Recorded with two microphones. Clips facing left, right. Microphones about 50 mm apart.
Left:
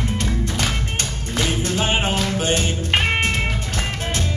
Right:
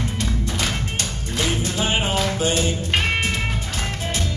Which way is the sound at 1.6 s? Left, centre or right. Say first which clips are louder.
Left 2 dB; left.